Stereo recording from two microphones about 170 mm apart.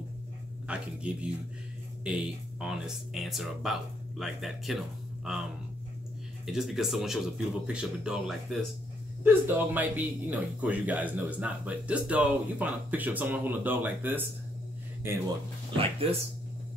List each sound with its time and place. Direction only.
0.7 s speech: 5° right (ahead or behind)
6.4 s speech: centre (ahead or behind)
9.2 s speech: 10° right (ahead or behind)
15.8 s speech: 35° right (ahead or behind)